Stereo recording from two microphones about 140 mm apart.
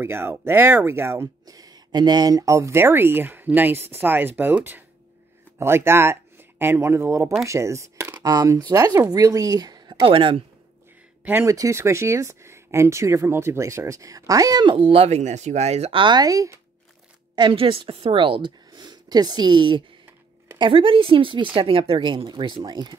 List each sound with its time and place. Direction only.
0.0 s speech: 15° right (ahead or behind); by 10.4 s 40° right (ahead or behind)
11.2 s speech: 20° right (ahead or behind)
17.4 s speech: 40° right (ahead or behind)